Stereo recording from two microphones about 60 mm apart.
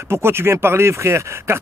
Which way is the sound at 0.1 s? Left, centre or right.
Right.